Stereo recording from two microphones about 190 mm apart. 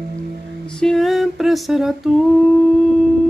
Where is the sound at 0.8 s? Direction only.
Centre (ahead or behind).